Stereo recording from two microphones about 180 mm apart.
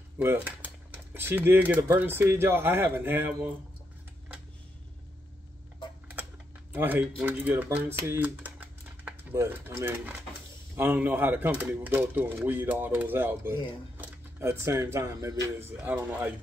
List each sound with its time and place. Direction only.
0.2 s speech: 15° right (ahead or behind)
6.7 s speech: 10° right (ahead or behind)